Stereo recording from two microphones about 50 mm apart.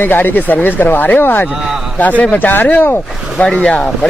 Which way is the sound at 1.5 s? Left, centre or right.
Centre.